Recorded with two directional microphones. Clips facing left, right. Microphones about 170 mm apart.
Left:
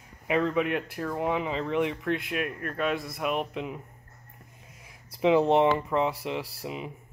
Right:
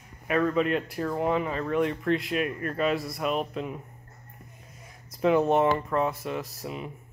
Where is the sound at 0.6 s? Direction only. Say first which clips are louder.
Right 2 dB; 5° left (ahead or behind).